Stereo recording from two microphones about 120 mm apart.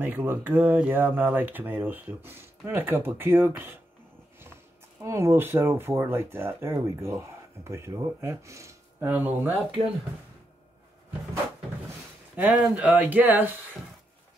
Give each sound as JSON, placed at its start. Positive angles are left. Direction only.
{"t": 0.0, "sound": "speech", "side_deg": -15}
{"t": 5.0, "sound": "speech", "side_deg": -20}
{"t": 12.4, "sound": "speech", "side_deg": -10}